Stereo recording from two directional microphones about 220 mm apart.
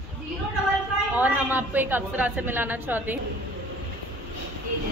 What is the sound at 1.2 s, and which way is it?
A woman's voice, 5° right (ahead or behind).